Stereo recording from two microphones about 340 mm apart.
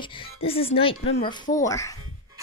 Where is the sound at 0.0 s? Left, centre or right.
Centre.